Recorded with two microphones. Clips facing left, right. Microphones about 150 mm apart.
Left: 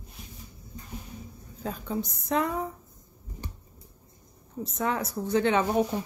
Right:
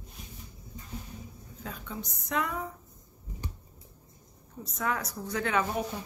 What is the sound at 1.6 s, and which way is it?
Speech, 35° left (ahead or behind).